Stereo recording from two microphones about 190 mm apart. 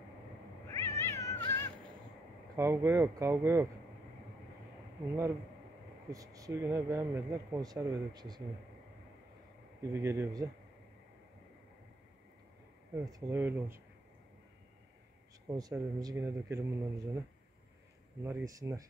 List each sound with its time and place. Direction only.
0.7 s cat: 15° left (ahead or behind)
2.5 s speech: 15° right (ahead or behind)
6.1 s speech: 20° right (ahead or behind)
9.9 s speech: 15° right (ahead or behind)
12.9 s speech: 15° right (ahead or behind)
15.5 s speech: 20° right (ahead or behind)
18.2 s speech: 15° right (ahead or behind)